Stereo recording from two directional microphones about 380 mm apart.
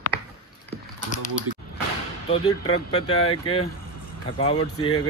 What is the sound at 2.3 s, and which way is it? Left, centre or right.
Speech, centre.